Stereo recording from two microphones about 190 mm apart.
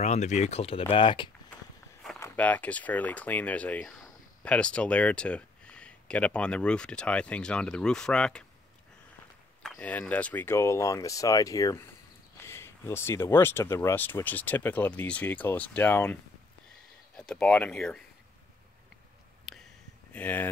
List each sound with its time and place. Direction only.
0.0 s speech: 35° left (ahead or behind)
2.1 s speech: 10° left (ahead or behind)
9.6 s speech: 5° left (ahead or behind)
17.2 s speech: 5° left (ahead or behind)
19.5 s a sound: centre (ahead or behind)
20.1 s speech: 10° left (ahead or behind)